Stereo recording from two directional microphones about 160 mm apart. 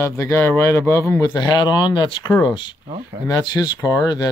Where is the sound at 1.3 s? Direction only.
25° left (ahead or behind).